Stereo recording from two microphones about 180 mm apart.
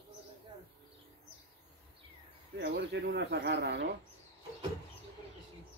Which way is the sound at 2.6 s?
65° right (ahead or behind).